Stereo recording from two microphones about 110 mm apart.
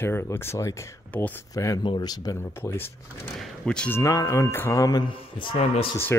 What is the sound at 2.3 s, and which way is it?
Music, 25° left (ahead or behind).